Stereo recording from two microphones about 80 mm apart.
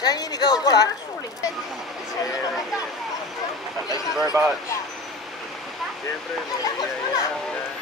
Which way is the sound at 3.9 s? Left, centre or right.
Left.